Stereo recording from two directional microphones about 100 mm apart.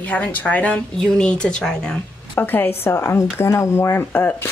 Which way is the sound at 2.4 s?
20° left (ahead or behind).